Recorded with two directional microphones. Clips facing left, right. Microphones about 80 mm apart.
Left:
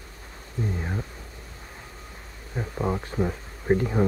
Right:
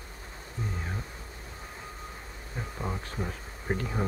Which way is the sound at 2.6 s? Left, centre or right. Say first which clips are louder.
Left 8 dB; left.